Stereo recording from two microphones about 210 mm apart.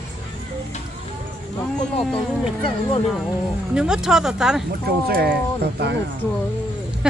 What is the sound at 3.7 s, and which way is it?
Speech, 5° right (ahead or behind).